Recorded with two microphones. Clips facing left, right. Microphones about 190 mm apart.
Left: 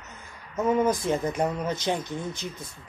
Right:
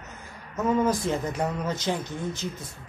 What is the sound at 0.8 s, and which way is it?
Speech, 15° left (ahead or behind).